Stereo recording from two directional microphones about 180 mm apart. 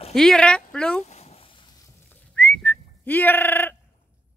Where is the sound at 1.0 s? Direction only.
35° left (ahead or behind).